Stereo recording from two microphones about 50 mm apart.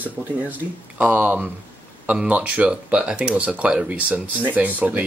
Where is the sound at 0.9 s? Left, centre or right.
Right.